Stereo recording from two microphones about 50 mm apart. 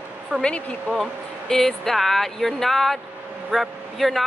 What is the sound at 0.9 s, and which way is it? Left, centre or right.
Speech, left.